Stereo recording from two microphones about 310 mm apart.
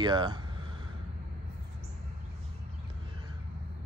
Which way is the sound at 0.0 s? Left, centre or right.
Centre.